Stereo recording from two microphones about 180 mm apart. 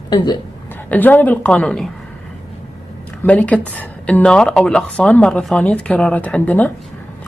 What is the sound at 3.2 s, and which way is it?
Speech, 10° left (ahead or behind).